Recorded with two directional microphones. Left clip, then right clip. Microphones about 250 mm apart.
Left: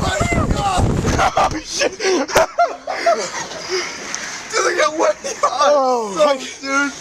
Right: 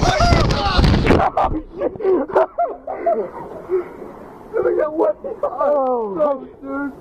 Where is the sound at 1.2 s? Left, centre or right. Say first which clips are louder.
Left 2 dB; left.